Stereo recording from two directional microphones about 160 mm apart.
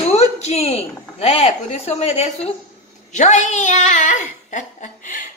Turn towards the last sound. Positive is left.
turn(degrees=50)  # may be behind; listen again after turning